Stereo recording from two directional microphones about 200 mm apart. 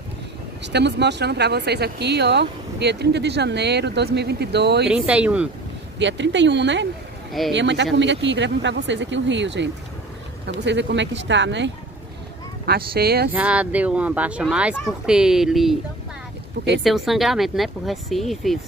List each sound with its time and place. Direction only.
0.7 s speech: 60° right (ahead or behind)
4.8 s speech: 5° right (ahead or behind)
5.9 s speech: 65° right (ahead or behind)
12.6 s speech: 50° right (ahead or behind)
13.3 s speech: 5° right (ahead or behind)
16.8 s speech: centre (ahead or behind)